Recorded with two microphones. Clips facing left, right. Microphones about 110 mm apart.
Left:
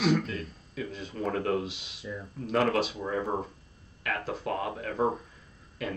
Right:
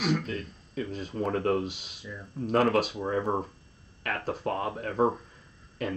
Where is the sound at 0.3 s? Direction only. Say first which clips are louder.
Right 2 dB; 40° right (ahead or behind).